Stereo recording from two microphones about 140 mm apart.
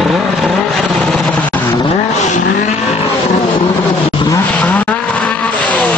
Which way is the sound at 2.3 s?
55° left (ahead or behind).